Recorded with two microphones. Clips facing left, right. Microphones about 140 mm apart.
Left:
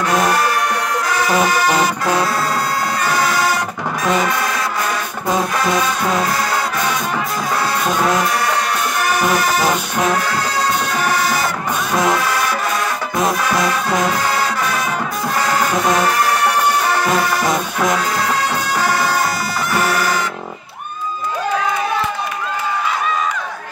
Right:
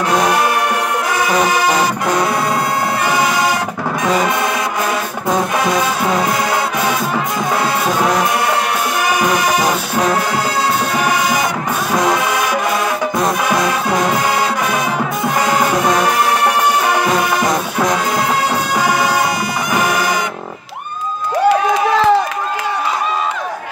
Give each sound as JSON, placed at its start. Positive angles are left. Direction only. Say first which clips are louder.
{"t": 1.5, "sound": "music", "louder": "right 1 dB", "side_deg": -15}
{"t": 7.8, "sound": "music", "louder": "left 1 dB", "side_deg": -5}
{"t": 9.6, "sound": "music", "louder": "right 1 dB", "side_deg": 0}
{"t": 11.9, "sound": "music", "louder": "right 1 dB", "side_deg": 0}
{"t": 15.4, "sound": "music", "louder": "right 2 dB", "side_deg": -15}
{"t": 17.5, "sound": "music", "louder": "right 1 dB", "side_deg": 0}
{"t": 19.7, "sound": "bagpipes", "louder": "right 1 dB", "side_deg": -15}
{"t": 21.5, "sound": "crowd", "louder": "right 7 dB", "side_deg": -90}